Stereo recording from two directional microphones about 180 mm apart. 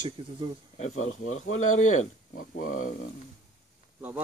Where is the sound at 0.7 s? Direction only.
40° left (ahead or behind).